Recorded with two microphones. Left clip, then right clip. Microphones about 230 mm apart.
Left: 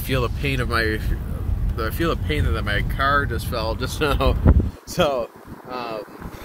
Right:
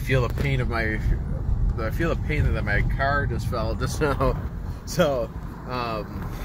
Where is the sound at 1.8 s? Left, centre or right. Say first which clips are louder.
Left 3 dB; centre.